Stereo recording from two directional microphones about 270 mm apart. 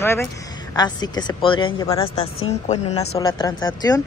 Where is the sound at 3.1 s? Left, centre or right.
Centre.